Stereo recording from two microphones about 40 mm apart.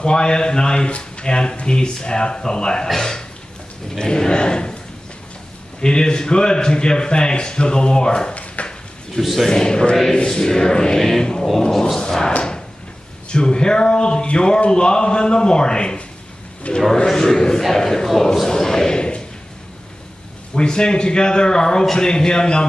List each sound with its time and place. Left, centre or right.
0.0 s a man's voice: left
5.8 s speech: left
8.6 s a sound: left
9.1 s a man's voice: centre
9.5 s a man's voice: centre
12.4 s a sound: left
13.3 s a man's voice: left
20.5 s speech: left